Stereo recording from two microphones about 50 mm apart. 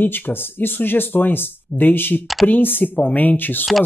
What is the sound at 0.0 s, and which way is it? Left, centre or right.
Speech, left.